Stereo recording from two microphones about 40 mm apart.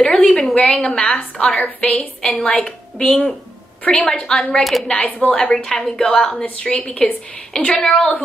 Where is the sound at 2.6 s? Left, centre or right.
Left.